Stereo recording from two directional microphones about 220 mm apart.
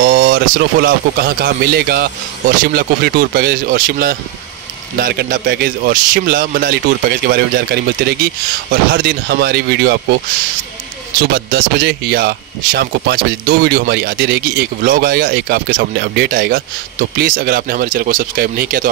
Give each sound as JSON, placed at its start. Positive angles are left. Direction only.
{"t": 0.0, "sound": "a man's voice", "side_deg": -40}
{"t": 11.3, "sound": "a man's voice", "side_deg": -45}